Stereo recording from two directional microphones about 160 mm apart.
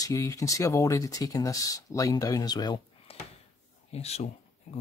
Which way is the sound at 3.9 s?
40° left (ahead or behind).